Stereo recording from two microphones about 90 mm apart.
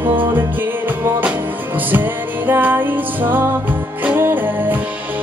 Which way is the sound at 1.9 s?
20° right (ahead or behind).